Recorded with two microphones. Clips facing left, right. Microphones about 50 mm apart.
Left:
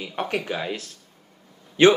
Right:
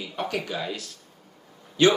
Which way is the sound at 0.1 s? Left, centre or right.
Left.